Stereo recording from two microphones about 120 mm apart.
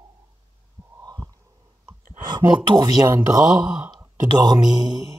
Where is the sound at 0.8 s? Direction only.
20° right (ahead or behind).